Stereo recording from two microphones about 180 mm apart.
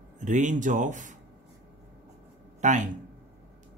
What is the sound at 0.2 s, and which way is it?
Speech, 45° right (ahead or behind).